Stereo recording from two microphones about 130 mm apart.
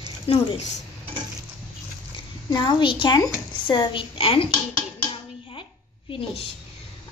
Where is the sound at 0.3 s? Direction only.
45° left (ahead or behind).